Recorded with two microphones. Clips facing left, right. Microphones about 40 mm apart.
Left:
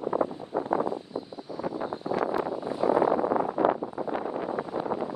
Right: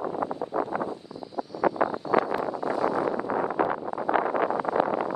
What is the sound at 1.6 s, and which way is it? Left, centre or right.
Vehicle, right.